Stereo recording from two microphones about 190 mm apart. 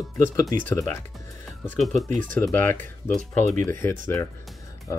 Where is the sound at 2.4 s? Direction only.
10° left (ahead or behind).